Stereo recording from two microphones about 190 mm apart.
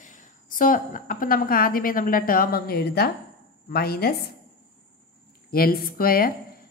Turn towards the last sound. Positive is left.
turn(degrees=50)  # may be behind; listen again after turning